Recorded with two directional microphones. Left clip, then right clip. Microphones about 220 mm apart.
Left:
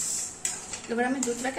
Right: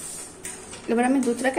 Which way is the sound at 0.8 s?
35° right (ahead or behind).